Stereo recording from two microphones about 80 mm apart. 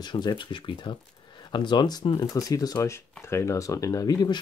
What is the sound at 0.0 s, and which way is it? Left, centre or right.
Speech, left.